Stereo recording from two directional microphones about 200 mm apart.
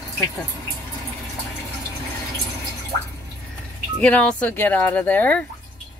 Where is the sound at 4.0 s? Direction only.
5° left (ahead or behind).